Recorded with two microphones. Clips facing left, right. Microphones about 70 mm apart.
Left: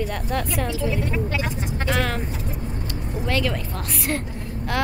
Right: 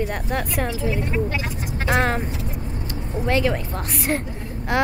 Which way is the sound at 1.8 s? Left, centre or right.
Right.